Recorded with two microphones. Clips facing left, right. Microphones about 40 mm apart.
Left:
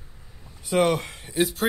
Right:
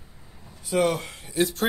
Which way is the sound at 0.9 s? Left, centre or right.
Left.